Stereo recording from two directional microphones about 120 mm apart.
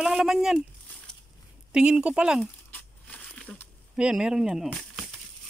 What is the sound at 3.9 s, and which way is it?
Speech, 5° right (ahead or behind).